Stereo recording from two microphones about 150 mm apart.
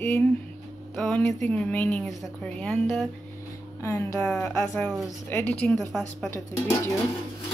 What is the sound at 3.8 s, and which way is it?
A woman's voice, 20° left (ahead or behind).